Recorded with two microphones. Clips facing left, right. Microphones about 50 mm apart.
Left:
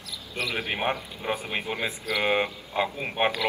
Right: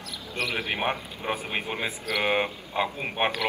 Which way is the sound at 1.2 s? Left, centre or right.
Centre.